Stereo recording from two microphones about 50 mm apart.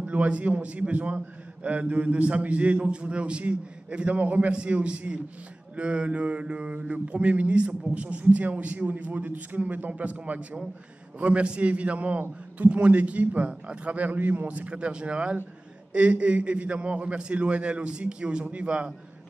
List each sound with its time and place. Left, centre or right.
0.0 s a man's voice: right